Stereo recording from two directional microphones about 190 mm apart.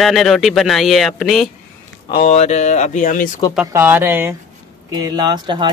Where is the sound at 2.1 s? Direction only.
35° left (ahead or behind).